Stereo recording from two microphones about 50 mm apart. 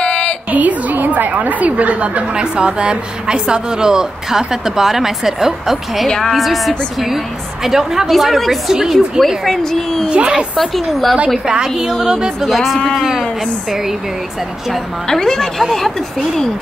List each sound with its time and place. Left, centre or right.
0.0 s a sound: centre
0.5 s a woman's voice: right; by 6.0 s centre
6.0 s speech: centre
6.3 s a woman's voice: centre
9.4 s speech: centre
10.0 s a woman's voice: right
10.6 s a woman's voice: centre
11.2 s a woman's voice: centre
12.7 s a woman's voice: centre
15.0 s speech: centre